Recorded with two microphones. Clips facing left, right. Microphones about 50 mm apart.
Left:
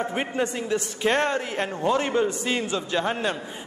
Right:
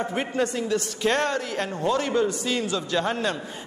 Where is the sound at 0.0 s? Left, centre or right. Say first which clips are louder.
Even; centre.